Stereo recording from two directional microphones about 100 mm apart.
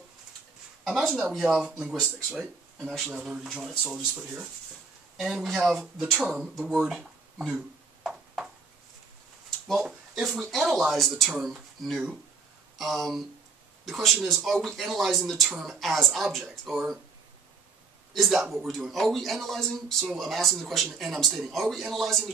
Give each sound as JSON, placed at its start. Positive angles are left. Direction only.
{"t": 0.8, "sound": "speech", "side_deg": 0}
{"t": 7.4, "sound": "a sound", "side_deg": -5}
{"t": 9.7, "sound": "speech", "side_deg": -5}
{"t": 18.1, "sound": "speech", "side_deg": 0}